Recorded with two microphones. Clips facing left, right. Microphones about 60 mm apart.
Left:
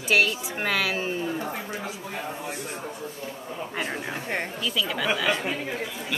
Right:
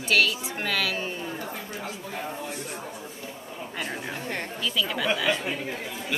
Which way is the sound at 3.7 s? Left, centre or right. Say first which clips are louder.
Left 1 dB; centre.